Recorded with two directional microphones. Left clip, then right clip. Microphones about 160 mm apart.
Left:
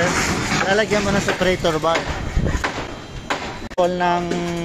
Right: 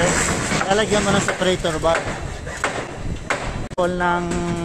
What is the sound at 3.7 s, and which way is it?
Speech, 10° right (ahead or behind).